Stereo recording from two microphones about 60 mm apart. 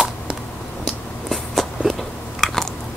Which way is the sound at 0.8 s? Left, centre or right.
Centre.